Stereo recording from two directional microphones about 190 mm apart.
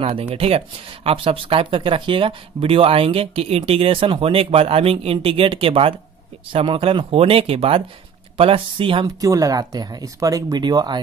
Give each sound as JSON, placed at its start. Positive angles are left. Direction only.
{"t": 0.0, "sound": "speech", "side_deg": -30}